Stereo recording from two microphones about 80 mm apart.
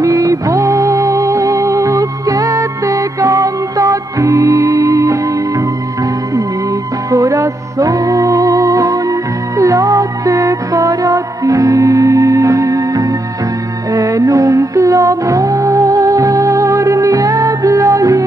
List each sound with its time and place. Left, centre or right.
0.0 s music: right
7.1 s music: right